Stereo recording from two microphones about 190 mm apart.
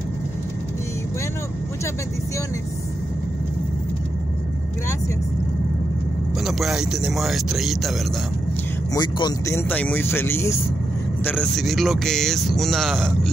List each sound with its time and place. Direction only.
6.4 s speech: centre (ahead or behind)
8.9 s speech: 20° left (ahead or behind); by 13.3 s centre (ahead or behind)